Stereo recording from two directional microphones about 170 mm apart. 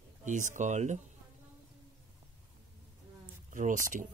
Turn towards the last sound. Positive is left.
turn(degrees=-50)  # may be behind; listen again after turning